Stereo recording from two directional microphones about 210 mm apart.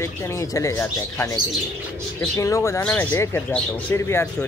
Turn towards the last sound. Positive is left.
turn(degrees=10)  # may be behind; listen again after turning